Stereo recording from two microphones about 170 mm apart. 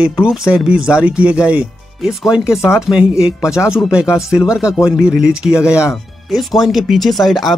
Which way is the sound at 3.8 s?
5° right (ahead or behind).